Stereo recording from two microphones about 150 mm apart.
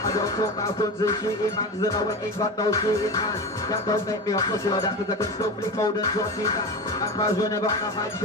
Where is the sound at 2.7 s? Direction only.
25° left (ahead or behind).